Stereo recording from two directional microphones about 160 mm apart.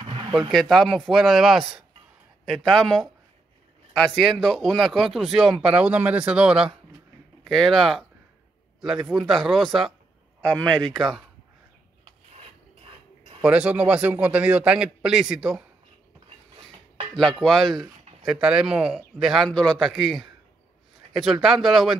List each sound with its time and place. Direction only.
0.0 s a sound: 30° right (ahead or behind)
0.5 s speech: centre (ahead or behind)
9.1 s speech: centre (ahead or behind)
13.4 s a man's voice: 5° right (ahead or behind)
17.1 s speech: centre (ahead or behind)